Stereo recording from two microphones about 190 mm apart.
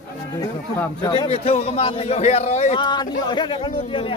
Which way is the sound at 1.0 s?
25° left (ahead or behind).